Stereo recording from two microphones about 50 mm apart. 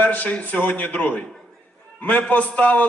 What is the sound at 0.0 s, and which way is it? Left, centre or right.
A man's voice, left.